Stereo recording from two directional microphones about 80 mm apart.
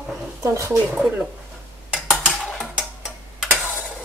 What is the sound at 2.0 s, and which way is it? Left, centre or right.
Mechanisms, centre.